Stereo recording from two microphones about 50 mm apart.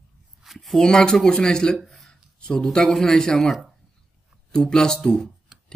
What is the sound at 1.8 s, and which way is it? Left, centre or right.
Speech, centre.